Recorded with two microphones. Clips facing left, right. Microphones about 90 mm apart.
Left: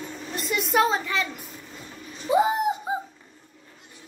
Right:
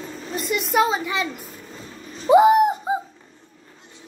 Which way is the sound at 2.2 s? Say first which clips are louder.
Right 8 dB; 70° right (ahead or behind).